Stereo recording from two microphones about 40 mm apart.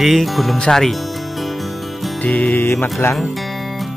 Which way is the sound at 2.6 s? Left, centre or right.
Left.